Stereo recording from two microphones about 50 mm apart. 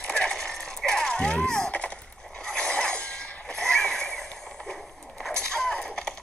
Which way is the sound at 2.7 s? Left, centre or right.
Left.